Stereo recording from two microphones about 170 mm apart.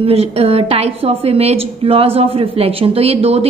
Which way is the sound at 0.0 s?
35° right (ahead or behind).